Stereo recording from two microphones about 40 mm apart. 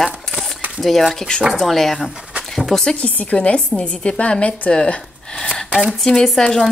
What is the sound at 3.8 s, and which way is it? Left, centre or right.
A woman's voice, left.